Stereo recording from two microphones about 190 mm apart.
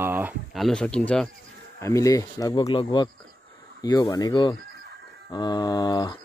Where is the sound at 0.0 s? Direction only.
10° right (ahead or behind).